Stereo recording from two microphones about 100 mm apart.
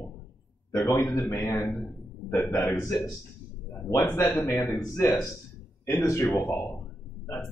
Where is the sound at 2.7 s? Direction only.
35° left (ahead or behind).